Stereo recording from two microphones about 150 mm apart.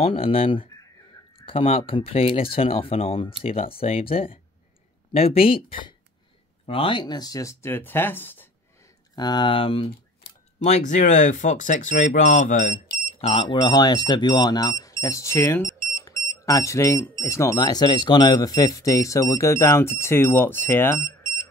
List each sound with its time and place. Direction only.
0.0 s speech: 40° left (ahead or behind); by 8.5 s 15° left (ahead or behind)
9.1 s speech: 30° left (ahead or behind)
10.6 s speech: 50° left (ahead or behind)
13.2 s speech: 40° left (ahead or behind)
13.6 s speech: 25° left (ahead or behind)